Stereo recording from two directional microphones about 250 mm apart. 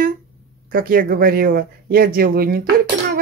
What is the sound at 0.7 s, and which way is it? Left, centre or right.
A woman's voice, right.